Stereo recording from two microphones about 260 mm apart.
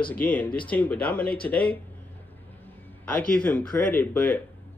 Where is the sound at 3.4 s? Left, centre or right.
Centre.